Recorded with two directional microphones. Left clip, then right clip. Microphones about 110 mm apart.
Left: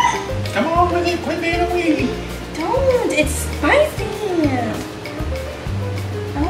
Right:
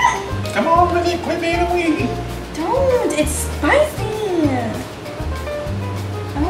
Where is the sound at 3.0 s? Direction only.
5° right (ahead or behind).